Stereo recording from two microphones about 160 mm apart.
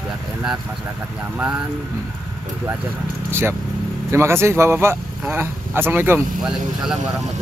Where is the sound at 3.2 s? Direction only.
15° right (ahead or behind).